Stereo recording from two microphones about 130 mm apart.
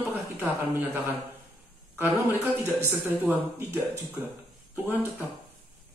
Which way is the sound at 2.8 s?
15° right (ahead or behind).